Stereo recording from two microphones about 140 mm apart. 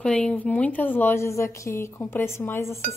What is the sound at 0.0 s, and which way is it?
A woman's voice, 5° left (ahead or behind).